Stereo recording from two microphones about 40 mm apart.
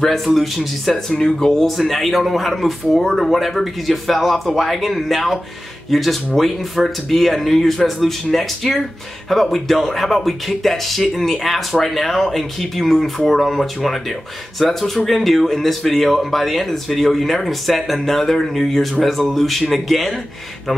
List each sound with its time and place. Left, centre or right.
0.0 s speech: centre
0.9 s speech: centre
1.8 s speech: centre